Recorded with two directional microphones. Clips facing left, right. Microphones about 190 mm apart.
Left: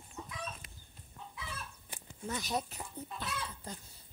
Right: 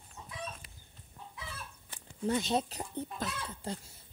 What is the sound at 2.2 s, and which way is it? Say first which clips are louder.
Speech: right 6 dB; 30° right (ahead or behind).